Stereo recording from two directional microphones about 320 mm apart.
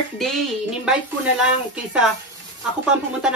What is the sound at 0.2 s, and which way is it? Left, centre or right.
Speech, centre.